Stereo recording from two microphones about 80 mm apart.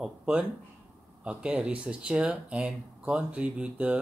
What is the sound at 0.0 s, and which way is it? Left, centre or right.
Speech, centre.